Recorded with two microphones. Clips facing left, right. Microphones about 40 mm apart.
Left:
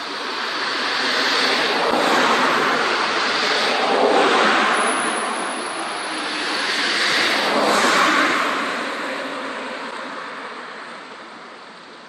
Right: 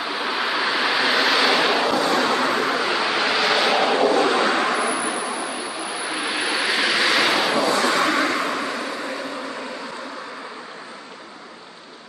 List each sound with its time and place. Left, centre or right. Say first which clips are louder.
0.0 s vehicle: right 2 dB; centre
2.0 s vehicle: left 3 dB; left
3.0 s vehicle: even; centre
4.1 s vehicle: left 3 dB; left
6.1 s vehicle: right 2 dB; centre
7.6 s vehicle: left 3 dB; left